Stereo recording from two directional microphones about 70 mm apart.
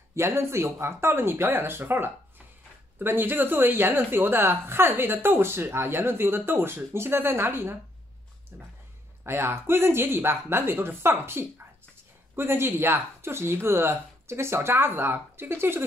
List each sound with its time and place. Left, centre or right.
0.1 s a woman's voice: right